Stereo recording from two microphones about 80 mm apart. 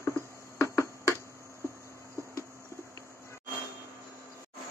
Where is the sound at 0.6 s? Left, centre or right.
Left.